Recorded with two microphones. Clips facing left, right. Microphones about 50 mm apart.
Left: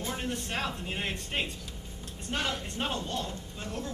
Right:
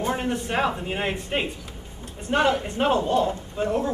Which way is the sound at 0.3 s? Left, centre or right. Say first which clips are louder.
Right 9 dB; centre.